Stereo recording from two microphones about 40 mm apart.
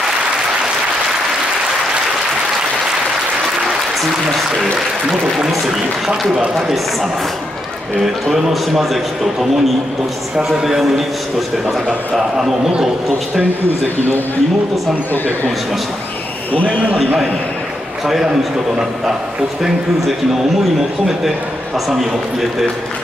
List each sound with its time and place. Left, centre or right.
8.0 s a man's voice: centre
11.6 s a man's voice: right
12.2 s a man's voice: centre
18.0 s a man's voice: centre
21.8 s a man's voice: centre